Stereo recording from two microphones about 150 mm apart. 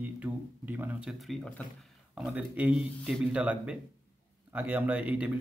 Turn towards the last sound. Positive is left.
turn(degrees=-10)  # may be behind; listen again after turning